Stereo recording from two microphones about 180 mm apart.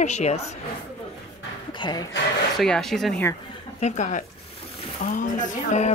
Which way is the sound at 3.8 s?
40° left (ahead or behind).